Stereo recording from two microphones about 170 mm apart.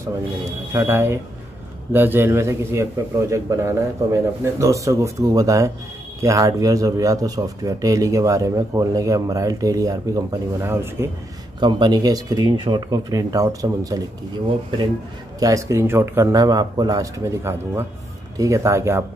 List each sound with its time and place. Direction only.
0.7 s a man's voice: 15° right (ahead or behind)
11.6 s speech: 25° right (ahead or behind)
15.3 s a man's voice: 20° right (ahead or behind)